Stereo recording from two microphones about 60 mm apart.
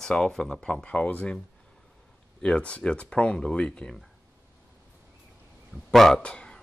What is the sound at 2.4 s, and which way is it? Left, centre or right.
Speech, centre.